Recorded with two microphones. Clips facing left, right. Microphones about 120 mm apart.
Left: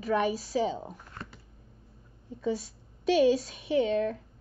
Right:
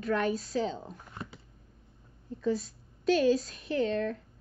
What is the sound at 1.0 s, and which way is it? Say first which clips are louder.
Computer keyboard: right 1 dB; 15° right (ahead or behind).